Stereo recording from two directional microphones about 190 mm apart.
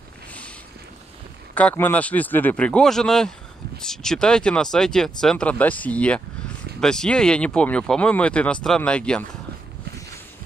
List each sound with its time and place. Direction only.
1.5 s speech: 10° left (ahead or behind)